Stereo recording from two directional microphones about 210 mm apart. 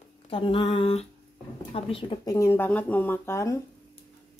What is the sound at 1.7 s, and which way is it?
Speech, 25° left (ahead or behind).